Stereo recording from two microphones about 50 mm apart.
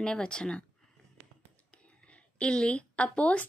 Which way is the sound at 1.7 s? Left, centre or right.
Left.